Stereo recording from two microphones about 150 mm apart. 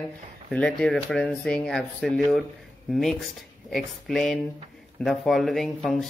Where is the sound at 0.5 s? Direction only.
5° left (ahead or behind).